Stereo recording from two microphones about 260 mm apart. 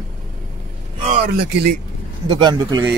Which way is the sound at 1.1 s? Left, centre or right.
Right.